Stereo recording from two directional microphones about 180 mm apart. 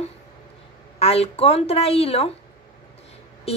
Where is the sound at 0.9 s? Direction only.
35° left (ahead or behind).